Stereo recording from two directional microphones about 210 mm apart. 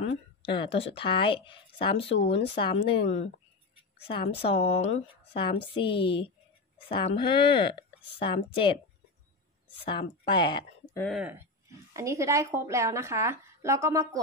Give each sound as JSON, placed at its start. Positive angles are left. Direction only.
{"t": 0.5, "sound": "speech", "side_deg": 25}
{"t": 4.3, "sound": "speech", "side_deg": 25}
{"t": 9.8, "sound": "speech", "side_deg": 25}
{"t": 11.0, "sound": "a woman's voice", "side_deg": 0}